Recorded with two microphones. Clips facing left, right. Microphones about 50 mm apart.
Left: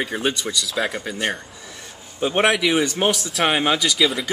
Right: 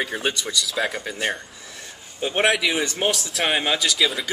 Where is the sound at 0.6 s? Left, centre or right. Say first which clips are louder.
Left 1 dB; centre.